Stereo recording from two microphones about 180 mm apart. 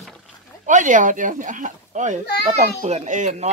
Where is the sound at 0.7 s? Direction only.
45° right (ahead or behind).